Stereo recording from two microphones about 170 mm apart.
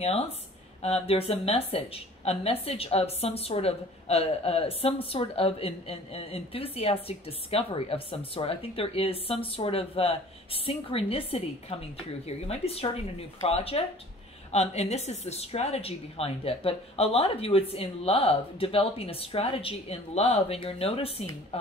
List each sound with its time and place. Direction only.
0.0 s a woman's voice: 35° left (ahead or behind)